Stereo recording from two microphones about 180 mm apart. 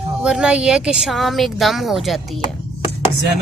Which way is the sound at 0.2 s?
5° right (ahead or behind).